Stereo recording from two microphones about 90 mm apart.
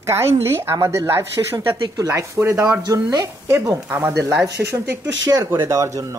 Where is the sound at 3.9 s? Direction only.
20° right (ahead or behind).